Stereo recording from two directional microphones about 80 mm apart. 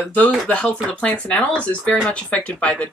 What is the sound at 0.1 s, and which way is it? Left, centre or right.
Speech, centre.